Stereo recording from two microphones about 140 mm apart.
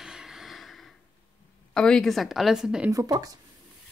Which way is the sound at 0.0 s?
5° right (ahead or behind).